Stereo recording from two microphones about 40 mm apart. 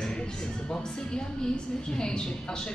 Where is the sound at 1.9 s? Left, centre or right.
Left.